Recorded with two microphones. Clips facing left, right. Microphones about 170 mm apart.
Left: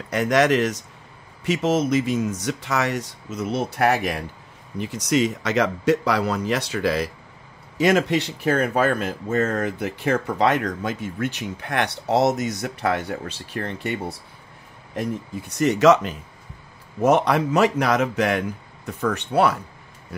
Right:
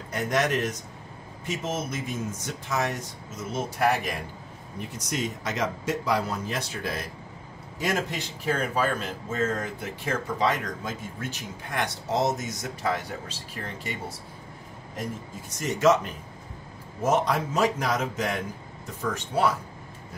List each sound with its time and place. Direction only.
0.1 s speech: 90° left; by 4.1 s 70° left (ahead or behind)
4.7 s speech: 85° left; by 14.1 s 65° left (ahead or behind)
15.5 s speech: 70° left (ahead or behind)
17.0 s speech: 70° left (ahead or behind)